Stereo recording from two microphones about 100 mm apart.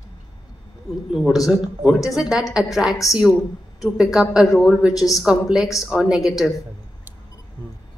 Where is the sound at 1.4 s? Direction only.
5° right (ahead or behind).